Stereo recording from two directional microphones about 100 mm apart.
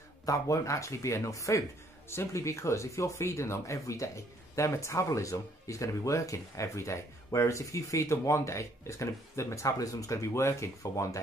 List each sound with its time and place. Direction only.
0.2 s speech: 35° left (ahead or behind)